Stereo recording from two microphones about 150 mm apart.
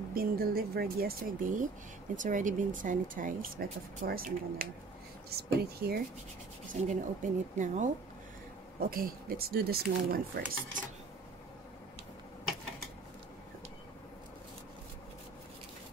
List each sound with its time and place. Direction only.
0.1 s speech: 80° right
5.3 s speech: 90° right
6.7 s speech: 50° right (ahead or behind)
8.7 s speech: 80° right